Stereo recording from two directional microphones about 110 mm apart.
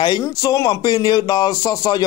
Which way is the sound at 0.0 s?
35° left (ahead or behind).